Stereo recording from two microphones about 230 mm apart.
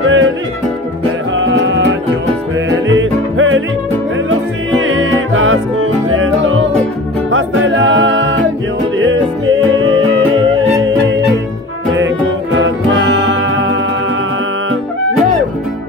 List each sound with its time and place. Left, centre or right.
0.0 s music: right
1.3 s music: right
4.8 s music: right
10.9 s music: right
12.5 s music: right